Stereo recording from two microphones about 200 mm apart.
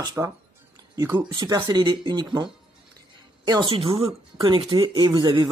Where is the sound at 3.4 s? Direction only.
20° right (ahead or behind).